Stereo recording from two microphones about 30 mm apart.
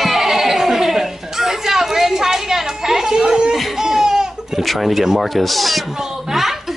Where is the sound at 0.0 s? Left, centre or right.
Centre.